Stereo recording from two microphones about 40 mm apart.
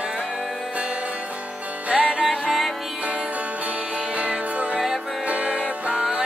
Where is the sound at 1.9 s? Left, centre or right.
Right.